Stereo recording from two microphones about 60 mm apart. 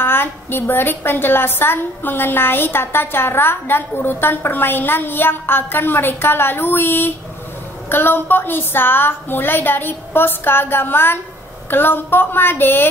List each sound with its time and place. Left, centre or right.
0.0 s a woman's voice: left